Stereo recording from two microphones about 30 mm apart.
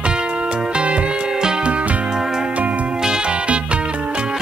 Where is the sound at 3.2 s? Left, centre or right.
Right.